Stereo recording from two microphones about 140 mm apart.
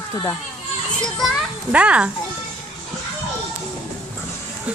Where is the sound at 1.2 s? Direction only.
5° right (ahead or behind).